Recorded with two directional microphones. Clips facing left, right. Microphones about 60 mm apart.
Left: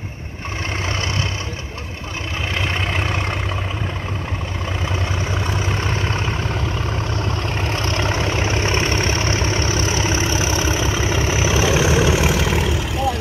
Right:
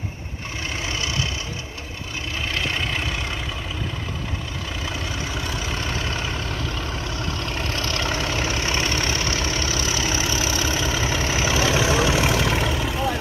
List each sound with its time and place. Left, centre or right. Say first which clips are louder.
2.5 s vehicle: left 3 dB; centre
2.9 s vehicle: left 4 dB; left
5.6 s vehicle: left 4 dB; left
7.6 s vehicle: left 4 dB; left; by 13.2 s centre